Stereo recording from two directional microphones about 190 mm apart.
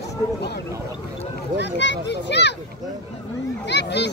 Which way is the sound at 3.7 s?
65° left (ahead or behind).